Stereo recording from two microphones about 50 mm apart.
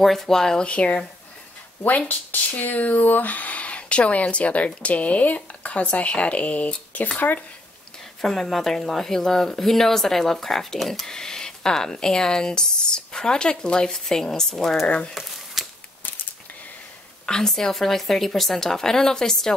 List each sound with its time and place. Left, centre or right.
0.0 s speech: centre
0.7 s speech: left
8.2 s speech: centre
15.1 s a sound: centre
17.3 s speech: centre